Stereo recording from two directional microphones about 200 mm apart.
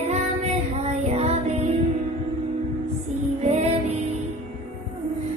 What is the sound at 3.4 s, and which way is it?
Music, 30° right (ahead or behind).